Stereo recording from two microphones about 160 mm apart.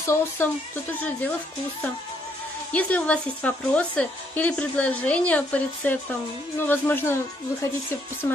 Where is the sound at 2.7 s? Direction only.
10° left (ahead or behind).